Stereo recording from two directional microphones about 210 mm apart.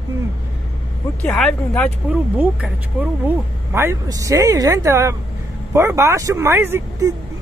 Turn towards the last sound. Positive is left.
turn(degrees=-15)  # may be behind; listen again after turning